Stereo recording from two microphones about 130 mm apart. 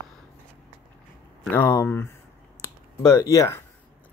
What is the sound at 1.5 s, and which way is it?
Speech, 20° left (ahead or behind).